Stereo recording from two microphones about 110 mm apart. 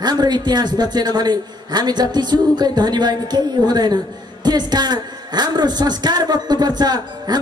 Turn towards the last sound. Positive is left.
turn(degrees=-40)  # may be behind; listen again after turning